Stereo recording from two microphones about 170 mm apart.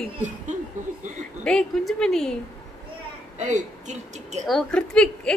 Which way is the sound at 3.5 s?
45° right (ahead or behind).